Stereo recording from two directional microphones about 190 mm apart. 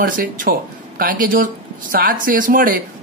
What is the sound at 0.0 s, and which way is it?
Speech, 45° right (ahead or behind).